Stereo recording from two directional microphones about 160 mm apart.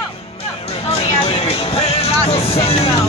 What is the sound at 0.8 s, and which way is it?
Music, 35° left (ahead or behind).